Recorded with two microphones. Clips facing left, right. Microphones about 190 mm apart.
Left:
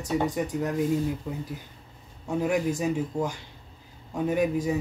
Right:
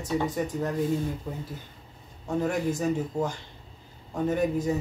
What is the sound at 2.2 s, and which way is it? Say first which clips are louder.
Speech: left 1 dB; 10° left (ahead or behind).